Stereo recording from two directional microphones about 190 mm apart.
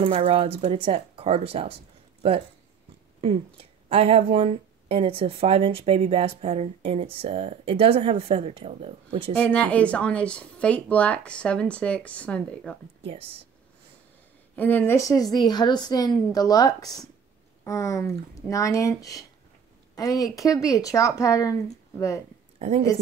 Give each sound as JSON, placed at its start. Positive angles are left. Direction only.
{"t": 0.0, "sound": "speech", "side_deg": -30}
{"t": 3.2, "sound": "speech", "side_deg": -30}
{"t": 9.3, "sound": "speech", "side_deg": 5}
{"t": 13.0, "sound": "speech", "side_deg": -30}
{"t": 14.5, "sound": "speech", "side_deg": 10}
{"t": 22.6, "sound": "a woman's voice", "side_deg": -35}